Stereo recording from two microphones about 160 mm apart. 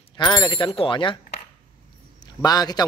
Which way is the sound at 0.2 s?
25° left (ahead or behind).